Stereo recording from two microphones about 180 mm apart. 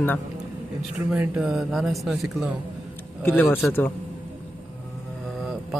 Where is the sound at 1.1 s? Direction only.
5° right (ahead or behind).